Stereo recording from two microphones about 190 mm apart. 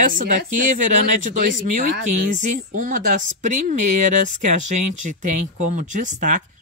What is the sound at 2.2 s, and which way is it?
Speech, 40° right (ahead or behind).